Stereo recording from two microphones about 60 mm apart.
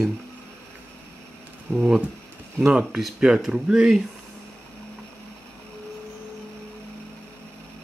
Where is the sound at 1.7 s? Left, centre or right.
Centre.